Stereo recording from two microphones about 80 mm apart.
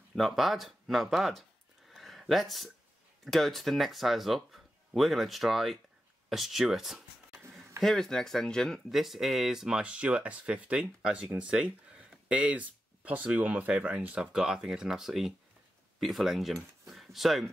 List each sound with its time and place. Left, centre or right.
0.1 s speech: centre
1.9 s a sound: centre
3.3 s speech: centre